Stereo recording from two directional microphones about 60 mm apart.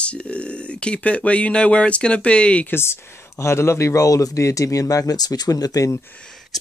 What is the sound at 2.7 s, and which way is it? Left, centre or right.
A man's voice, left.